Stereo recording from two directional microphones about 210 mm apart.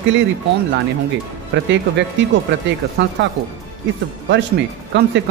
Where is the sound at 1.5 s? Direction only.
55° right (ahead or behind).